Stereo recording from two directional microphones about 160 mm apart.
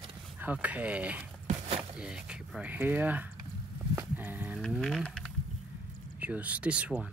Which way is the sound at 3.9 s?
10° right (ahead or behind).